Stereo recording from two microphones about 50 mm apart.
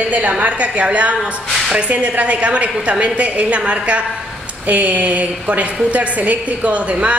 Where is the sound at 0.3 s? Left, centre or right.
Right.